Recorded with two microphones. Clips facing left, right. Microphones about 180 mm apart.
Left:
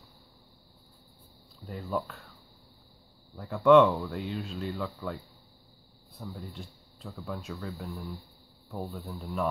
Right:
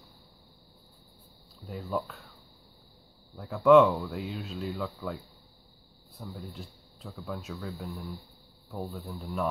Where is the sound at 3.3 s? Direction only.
Centre (ahead or behind).